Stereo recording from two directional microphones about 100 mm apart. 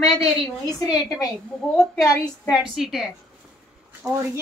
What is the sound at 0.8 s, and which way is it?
Speech, 35° left (ahead or behind).